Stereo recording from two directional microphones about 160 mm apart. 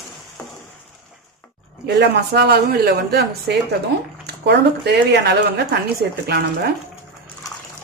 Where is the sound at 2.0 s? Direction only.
90° right.